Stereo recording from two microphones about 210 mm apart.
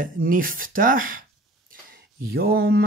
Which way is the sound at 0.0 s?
40° right (ahead or behind).